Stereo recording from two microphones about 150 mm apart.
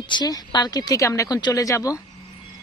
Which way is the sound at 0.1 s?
30° left (ahead or behind).